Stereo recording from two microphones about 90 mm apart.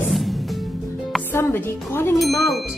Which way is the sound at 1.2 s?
25° left (ahead or behind).